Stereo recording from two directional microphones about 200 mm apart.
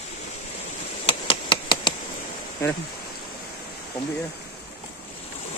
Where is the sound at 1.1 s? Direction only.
25° left (ahead or behind).